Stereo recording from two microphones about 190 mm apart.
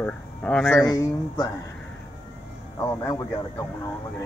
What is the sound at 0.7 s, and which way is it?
Speech, 15° left (ahead or behind).